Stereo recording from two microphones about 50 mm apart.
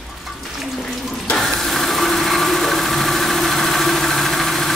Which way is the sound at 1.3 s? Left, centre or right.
Centre.